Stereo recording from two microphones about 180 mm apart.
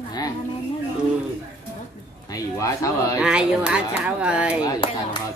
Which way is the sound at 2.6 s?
20° left (ahead or behind).